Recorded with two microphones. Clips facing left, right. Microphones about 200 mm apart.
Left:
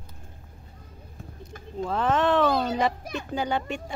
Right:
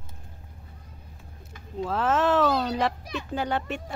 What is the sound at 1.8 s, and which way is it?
A woman's voice, 5° right (ahead or behind).